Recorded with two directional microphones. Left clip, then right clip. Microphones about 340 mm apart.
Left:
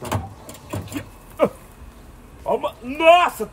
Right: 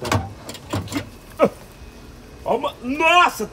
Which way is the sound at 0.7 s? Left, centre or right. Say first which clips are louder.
Right 4 dB; centre.